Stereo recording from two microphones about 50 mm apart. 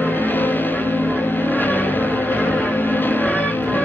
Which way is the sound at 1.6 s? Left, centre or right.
Left.